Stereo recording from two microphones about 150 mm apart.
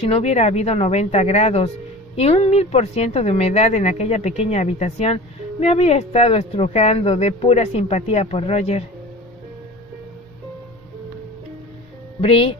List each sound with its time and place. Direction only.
0.0 s speech: 45° left (ahead or behind)
12.2 s speech: 40° left (ahead or behind)